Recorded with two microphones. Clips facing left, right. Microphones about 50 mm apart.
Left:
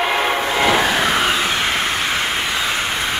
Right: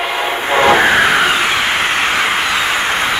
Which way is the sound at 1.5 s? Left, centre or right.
Right.